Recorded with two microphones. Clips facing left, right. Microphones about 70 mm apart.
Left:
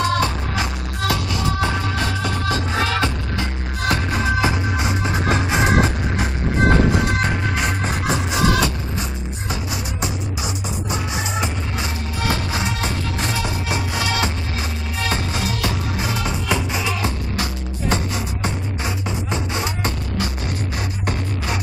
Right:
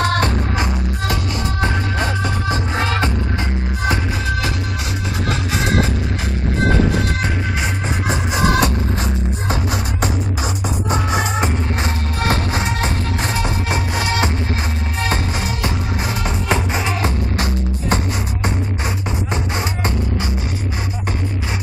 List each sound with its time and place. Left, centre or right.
0.0 s music: right
0.6 s music: right
5.3 s music: centre
8.3 s music: right